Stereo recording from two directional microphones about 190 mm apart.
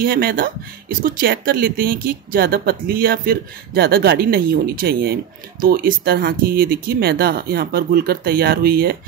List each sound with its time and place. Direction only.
0.0 s speech: 50° right (ahead or behind)